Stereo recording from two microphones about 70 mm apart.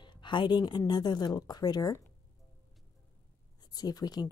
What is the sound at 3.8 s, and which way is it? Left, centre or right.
Speech, left.